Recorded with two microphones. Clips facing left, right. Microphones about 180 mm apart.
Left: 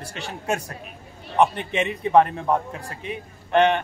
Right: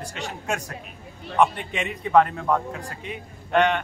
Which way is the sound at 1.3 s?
35° left (ahead or behind).